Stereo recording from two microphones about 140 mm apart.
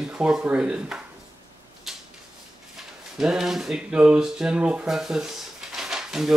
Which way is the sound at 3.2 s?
5° right (ahead or behind).